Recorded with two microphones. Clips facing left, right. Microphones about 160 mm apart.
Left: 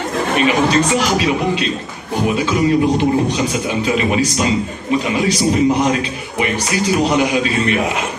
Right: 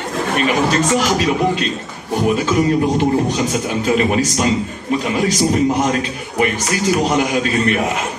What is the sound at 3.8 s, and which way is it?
A man's voice, 45° right (ahead or behind).